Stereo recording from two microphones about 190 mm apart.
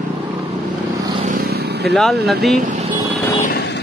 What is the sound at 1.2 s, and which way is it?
Vehicle, 50° right (ahead or behind).